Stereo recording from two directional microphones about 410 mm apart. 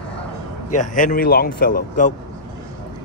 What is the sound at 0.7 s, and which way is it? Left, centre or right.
Speech, centre.